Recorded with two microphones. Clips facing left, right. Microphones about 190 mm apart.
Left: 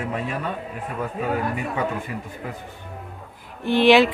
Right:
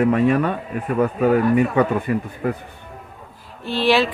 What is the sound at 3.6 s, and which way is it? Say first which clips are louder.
Speech: left 3 dB; 15° left (ahead or behind).